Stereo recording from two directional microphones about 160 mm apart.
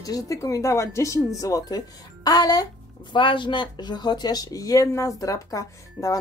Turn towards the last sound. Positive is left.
turn(degrees=20)  # may be behind; listen again after turning